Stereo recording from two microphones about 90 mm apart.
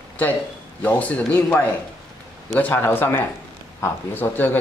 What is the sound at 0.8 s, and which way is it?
Speech, 15° left (ahead or behind).